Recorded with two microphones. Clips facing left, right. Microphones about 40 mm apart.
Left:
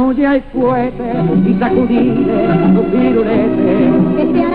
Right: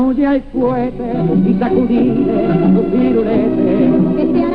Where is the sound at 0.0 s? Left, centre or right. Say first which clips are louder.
Left 1 dB; left.